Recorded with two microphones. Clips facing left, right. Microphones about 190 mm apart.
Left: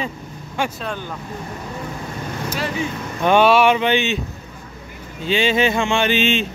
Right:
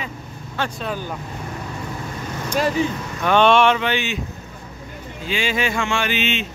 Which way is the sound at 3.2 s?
10° left (ahead or behind).